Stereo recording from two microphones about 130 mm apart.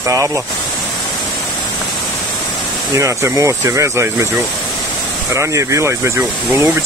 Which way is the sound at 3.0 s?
25° right (ahead or behind).